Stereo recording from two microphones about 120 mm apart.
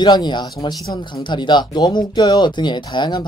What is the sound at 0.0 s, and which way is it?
Speech, 40° left (ahead or behind).